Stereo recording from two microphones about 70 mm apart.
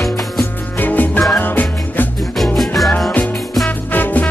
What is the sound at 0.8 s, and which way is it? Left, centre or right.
Music, left.